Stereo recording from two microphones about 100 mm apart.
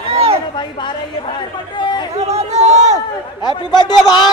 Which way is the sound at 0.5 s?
50° left (ahead or behind).